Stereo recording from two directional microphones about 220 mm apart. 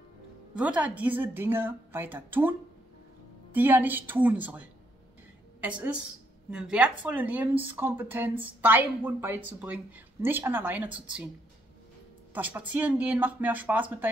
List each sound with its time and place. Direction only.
0.6 s speech: 5° right (ahead or behind)
3.5 s a woman's voice: 10° right (ahead or behind)
12.4 s speech: 5° right (ahead or behind)